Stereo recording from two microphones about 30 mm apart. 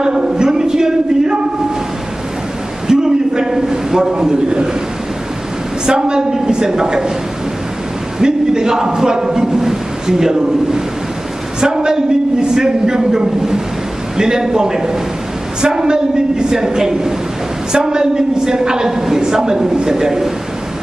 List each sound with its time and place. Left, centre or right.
0.0 s a man's voice: right
2.9 s a sound: centre
5.9 s a man's voice: right
8.2 s a man's voice: right